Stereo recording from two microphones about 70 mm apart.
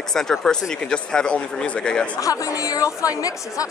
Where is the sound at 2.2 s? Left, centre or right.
Left.